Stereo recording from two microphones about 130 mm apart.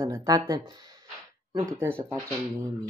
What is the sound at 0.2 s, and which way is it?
Speech, 30° right (ahead or behind).